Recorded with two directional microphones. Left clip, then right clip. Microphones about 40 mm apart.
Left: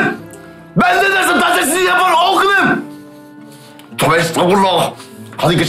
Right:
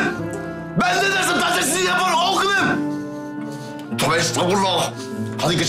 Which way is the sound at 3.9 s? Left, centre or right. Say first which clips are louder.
Left 6 dB; right.